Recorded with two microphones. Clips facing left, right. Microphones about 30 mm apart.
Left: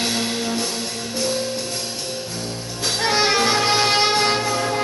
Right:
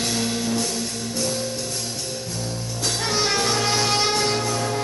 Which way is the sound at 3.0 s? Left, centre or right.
Left.